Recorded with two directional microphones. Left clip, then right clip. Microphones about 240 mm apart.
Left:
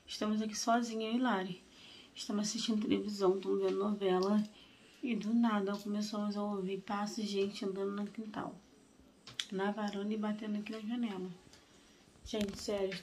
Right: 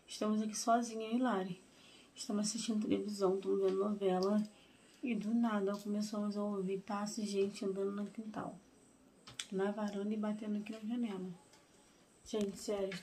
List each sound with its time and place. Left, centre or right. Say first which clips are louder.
0.1 s speech: left 1 dB; centre
12.5 s speech: left 2 dB; centre